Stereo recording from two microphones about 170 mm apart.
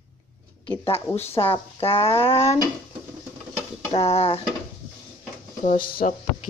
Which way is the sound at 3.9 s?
35° left (ahead or behind).